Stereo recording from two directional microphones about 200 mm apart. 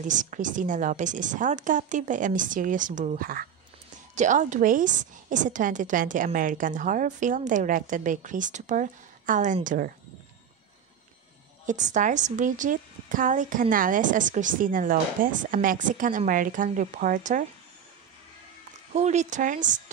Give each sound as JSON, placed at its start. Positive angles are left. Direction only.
{"t": 0.1, "sound": "a woman's voice", "side_deg": -40}
{"t": 11.6, "sound": "a woman's voice", "side_deg": -35}
{"t": 18.9, "sound": "a woman's voice", "side_deg": -35}